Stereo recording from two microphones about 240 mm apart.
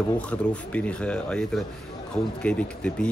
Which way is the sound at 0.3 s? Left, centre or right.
Centre.